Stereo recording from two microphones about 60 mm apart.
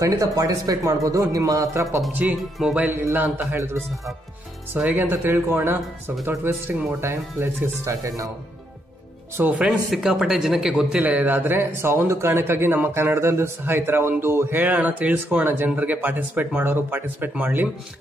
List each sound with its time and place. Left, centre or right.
0.0 s speech: right
1.8 s speech: right
2.9 s speech: right
4.7 s speech: right
5.1 s speech: right
7.8 s speech: right
9.4 s speech: right
9.9 s speech: centre
11.0 s speech: right
11.9 s speech: right
13.0 s speech: right